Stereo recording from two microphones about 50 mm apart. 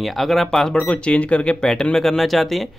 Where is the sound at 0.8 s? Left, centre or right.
Left.